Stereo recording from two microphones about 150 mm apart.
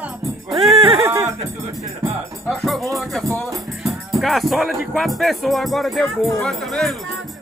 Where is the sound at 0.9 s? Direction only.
20° right (ahead or behind).